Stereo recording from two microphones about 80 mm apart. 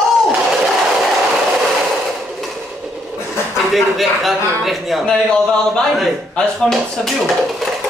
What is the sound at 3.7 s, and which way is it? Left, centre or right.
A man's voice, centre.